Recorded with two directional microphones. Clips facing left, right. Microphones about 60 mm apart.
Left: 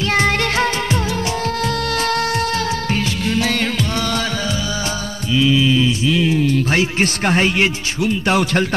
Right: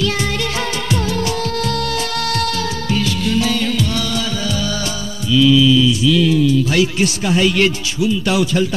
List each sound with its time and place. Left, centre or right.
0.0 s music: left
1.2 s music of bollywood: left
1.9 s music: left
2.2 s music of bollywood: left
3.9 s music: left
5.3 s mantra: left
6.7 s speech: left